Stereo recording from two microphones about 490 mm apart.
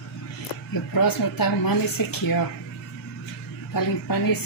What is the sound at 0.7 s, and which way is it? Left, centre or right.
A woman's voice, left.